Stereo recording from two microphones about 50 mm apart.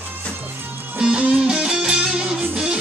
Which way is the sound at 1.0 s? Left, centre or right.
Centre.